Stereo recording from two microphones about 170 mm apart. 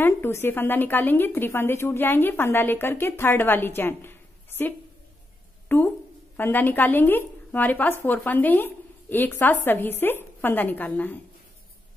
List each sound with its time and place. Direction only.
0.0 s speech: 15° left (ahead or behind)